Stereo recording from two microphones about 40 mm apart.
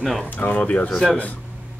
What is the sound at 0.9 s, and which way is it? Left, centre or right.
Speech, centre.